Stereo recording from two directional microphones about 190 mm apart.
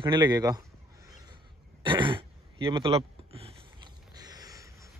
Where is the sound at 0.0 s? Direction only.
25° right (ahead or behind).